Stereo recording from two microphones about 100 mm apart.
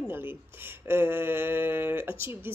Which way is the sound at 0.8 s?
20° right (ahead or behind).